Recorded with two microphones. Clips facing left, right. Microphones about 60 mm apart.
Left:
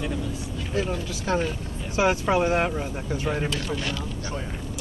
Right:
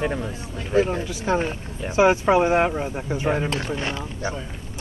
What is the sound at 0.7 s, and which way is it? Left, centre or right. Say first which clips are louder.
Speech: right 7 dB; right.